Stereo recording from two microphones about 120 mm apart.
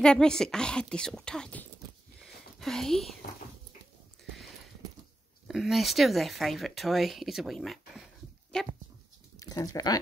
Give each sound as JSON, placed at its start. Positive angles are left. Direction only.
{"t": 0.0, "sound": "speech", "side_deg": 5}
{"t": 2.1, "sound": "a sound", "side_deg": 5}
{"t": 5.5, "sound": "speech", "side_deg": 0}
{"t": 9.4, "sound": "speech", "side_deg": 30}